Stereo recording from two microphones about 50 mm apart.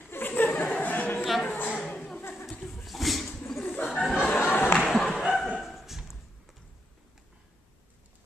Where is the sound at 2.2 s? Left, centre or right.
Left.